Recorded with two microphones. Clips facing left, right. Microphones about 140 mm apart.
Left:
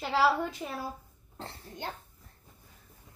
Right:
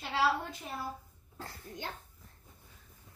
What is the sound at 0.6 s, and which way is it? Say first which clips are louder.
Speech: left 5 dB; 90° left.